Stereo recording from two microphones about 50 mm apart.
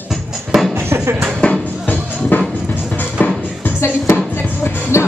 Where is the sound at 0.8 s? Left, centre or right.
Right.